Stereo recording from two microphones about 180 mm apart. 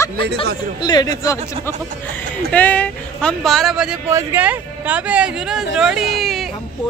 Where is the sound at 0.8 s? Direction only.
20° left (ahead or behind).